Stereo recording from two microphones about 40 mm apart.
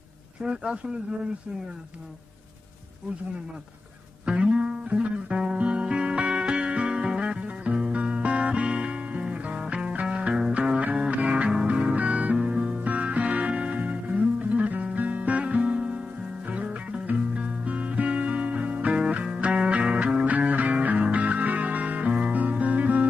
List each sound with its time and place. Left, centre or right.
0.4 s speech: centre
4.3 s music: right
10.8 s music: right
17.0 s music: right
20.2 s music: right